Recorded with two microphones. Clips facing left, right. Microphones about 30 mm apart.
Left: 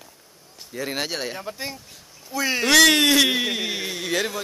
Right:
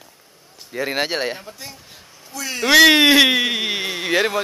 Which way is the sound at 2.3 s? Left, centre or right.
Centre.